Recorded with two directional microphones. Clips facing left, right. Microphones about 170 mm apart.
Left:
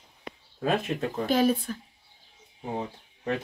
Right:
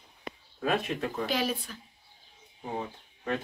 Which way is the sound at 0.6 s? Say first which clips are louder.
Left 2 dB; 35° left (ahead or behind).